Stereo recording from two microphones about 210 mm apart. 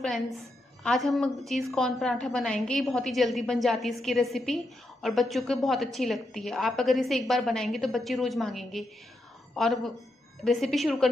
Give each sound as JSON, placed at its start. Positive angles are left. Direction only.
{"t": 0.0, "sound": "a woman's voice", "side_deg": 0}